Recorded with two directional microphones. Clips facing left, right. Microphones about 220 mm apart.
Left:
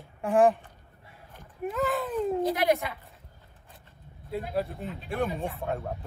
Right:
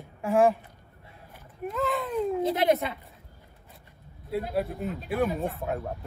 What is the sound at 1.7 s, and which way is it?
Speech, centre (ahead or behind).